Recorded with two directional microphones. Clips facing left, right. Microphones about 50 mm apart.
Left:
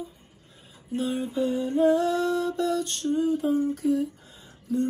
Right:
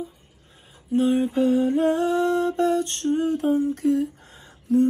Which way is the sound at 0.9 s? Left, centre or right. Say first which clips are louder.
Right 7 dB; right.